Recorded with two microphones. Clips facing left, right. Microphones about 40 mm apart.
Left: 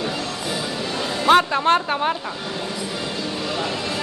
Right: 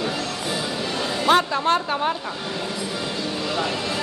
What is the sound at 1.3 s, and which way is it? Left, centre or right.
Speech, left.